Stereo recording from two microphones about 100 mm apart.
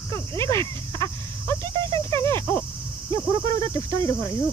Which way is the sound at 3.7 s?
25° left (ahead or behind).